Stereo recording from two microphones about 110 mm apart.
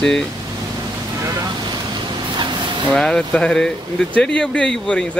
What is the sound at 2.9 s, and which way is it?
Speech, 5° left (ahead or behind).